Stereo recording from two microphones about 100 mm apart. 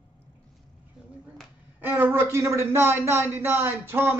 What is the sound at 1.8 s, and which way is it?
A child's voice, 20° right (ahead or behind).